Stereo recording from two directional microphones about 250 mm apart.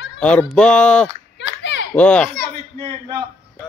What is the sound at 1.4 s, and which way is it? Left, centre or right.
Children playing, left.